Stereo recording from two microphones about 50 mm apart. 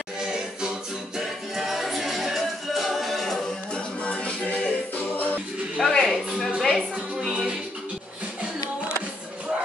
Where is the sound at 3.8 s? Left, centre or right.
Left.